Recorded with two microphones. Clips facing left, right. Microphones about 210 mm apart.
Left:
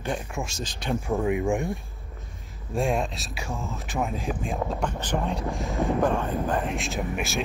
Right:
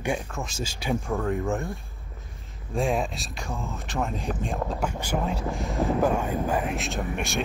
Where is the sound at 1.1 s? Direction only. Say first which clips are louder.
Left 6 dB; 15° left (ahead or behind).